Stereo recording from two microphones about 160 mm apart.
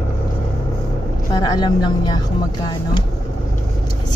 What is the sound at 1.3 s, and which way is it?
Speech, 25° left (ahead or behind).